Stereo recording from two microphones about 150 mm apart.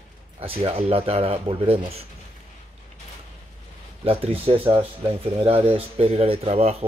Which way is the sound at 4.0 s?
40° right (ahead or behind).